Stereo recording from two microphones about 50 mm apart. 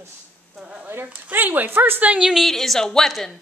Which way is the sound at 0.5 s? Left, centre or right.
Right.